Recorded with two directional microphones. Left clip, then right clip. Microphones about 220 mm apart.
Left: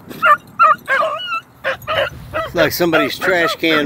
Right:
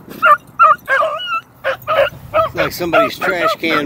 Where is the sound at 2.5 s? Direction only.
30° left (ahead or behind).